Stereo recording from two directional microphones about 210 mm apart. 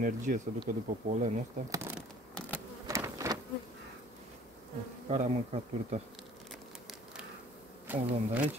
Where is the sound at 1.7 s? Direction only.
10° right (ahead or behind).